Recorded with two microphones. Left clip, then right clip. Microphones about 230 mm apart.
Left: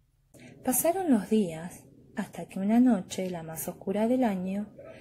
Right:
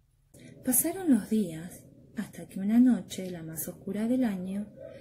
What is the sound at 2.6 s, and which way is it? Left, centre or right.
A woman's voice, centre.